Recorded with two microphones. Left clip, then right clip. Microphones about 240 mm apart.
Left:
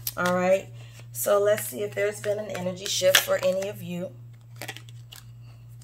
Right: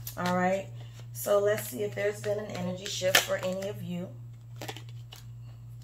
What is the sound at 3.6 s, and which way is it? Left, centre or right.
Speech, left.